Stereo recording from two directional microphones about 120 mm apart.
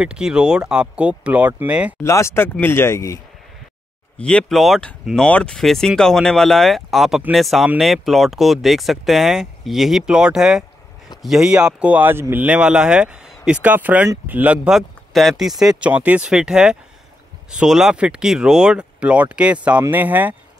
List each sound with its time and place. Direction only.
0.0 s speech: 5° right (ahead or behind)
2.0 s speech: 25° left (ahead or behind)
4.2 s speech: 10° left (ahead or behind); by 20.3 s 15° right (ahead or behind)